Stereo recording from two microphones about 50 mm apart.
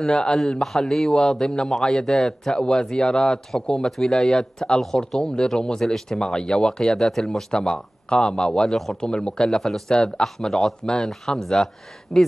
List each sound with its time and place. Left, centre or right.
0.0 s a man's voice: centre
7.0 s speech: centre
7.5 s a man's voice: centre
8.7 s speech: centre
9.1 s a man's voice: centre
9.6 s a man's voice: centre